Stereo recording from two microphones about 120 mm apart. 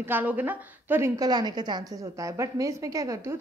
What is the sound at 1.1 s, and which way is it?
A woman's voice, 35° right (ahead or behind).